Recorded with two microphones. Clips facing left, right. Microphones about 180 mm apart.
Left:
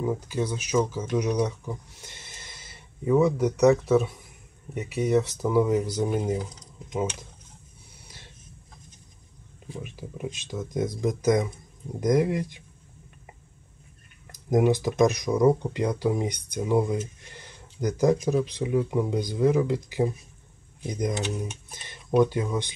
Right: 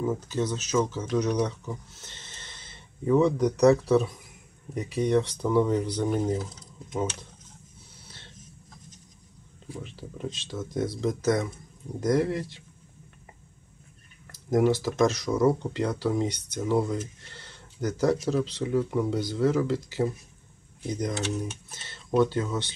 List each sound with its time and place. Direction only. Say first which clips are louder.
0.0 s speech: even; 10° left (ahead or behind)
9.8 s speech: left 2 dB; 10° left (ahead or behind)
14.5 s speech: left 1 dB; 15° left (ahead or behind)